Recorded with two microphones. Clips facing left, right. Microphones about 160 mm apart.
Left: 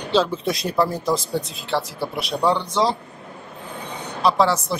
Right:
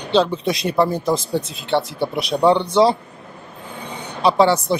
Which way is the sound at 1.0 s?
25° right (ahead or behind).